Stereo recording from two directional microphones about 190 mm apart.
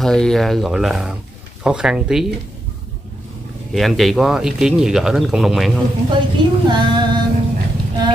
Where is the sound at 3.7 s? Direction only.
Centre (ahead or behind).